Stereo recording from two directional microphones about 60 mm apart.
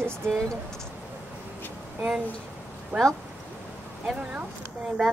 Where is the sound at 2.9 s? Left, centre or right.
Right.